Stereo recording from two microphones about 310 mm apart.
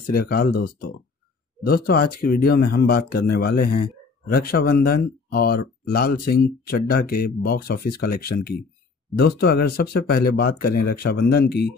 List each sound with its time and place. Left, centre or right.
0.1 s speech: left